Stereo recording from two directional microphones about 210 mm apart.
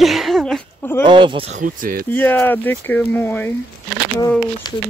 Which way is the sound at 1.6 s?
40° right (ahead or behind).